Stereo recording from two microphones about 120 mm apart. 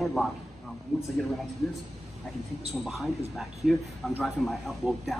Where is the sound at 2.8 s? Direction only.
Centre (ahead or behind).